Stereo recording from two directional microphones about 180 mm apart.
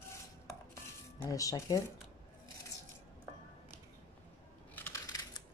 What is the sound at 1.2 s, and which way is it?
Speech, 20° left (ahead or behind).